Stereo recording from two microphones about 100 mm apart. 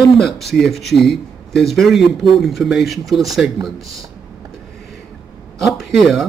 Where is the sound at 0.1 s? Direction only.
Centre (ahead or behind).